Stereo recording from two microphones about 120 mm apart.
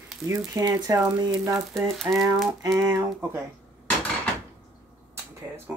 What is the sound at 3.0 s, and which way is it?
Speech, 20° right (ahead or behind).